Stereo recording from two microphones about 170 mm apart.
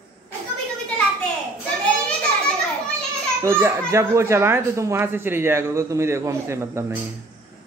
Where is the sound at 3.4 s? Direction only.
15° right (ahead or behind).